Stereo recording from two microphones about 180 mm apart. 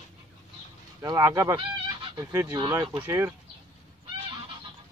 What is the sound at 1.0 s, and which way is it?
Speech, 15° right (ahead or behind).